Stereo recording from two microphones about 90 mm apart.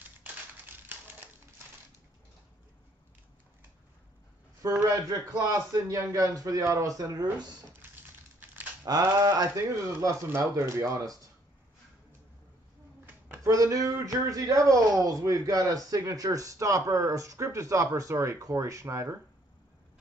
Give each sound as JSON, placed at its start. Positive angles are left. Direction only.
{"t": 0.8, "sound": "typewriter", "side_deg": -25}
{"t": 4.6, "sound": "a man's voice", "side_deg": -35}
{"t": 7.9, "sound": "a sound", "side_deg": -20}
{"t": 8.8, "sound": "speech", "side_deg": -40}
{"t": 13.0, "sound": "a sound", "side_deg": -25}
{"t": 13.5, "sound": "speech", "side_deg": -40}